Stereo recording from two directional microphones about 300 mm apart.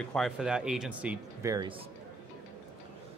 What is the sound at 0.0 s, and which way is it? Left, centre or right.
Speech, centre.